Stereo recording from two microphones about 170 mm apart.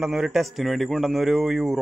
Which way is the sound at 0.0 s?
Centre (ahead or behind).